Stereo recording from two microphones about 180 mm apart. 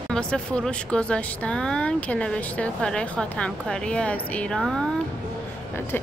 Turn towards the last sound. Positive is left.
turn(degrees=0)  # may be behind; listen again after turning